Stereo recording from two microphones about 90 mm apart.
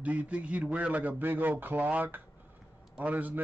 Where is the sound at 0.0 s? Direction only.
15° right (ahead or behind).